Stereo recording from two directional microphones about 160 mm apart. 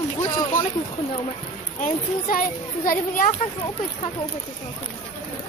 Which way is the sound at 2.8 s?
60° left (ahead or behind).